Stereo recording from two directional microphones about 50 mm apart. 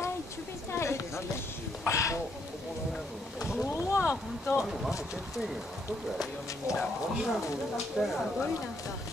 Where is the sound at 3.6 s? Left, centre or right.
Left.